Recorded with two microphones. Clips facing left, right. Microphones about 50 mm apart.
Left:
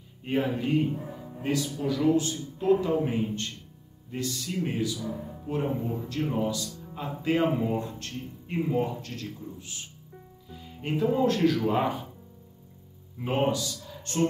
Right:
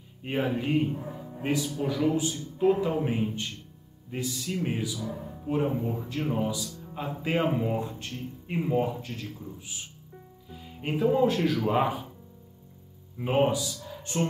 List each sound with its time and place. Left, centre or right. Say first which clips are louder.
0.4 s speech: even; centre
13.2 s a man's voice: right 2 dB; centre